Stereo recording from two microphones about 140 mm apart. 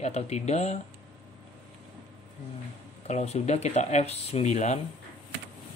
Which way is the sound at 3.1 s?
55° left (ahead or behind).